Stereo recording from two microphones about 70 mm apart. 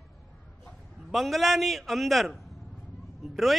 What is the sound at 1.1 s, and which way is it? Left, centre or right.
A man's voice, centre.